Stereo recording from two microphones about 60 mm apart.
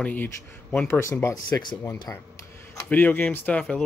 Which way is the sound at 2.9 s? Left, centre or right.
Left.